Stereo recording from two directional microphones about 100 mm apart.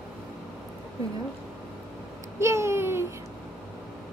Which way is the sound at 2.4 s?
30° right (ahead or behind).